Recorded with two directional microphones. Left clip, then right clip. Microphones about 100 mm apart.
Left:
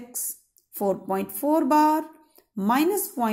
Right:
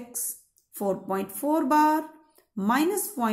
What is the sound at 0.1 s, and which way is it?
A woman's voice, 15° left (ahead or behind).